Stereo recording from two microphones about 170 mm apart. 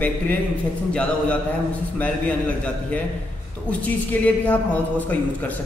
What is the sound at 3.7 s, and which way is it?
A man's voice, 10° left (ahead or behind).